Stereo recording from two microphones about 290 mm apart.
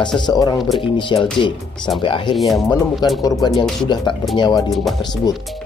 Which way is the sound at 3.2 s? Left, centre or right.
Centre.